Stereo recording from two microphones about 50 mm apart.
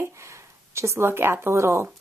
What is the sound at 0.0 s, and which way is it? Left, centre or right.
Speech, right.